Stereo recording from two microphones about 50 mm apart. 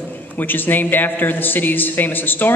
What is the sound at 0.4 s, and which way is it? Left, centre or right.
A man's voice, left.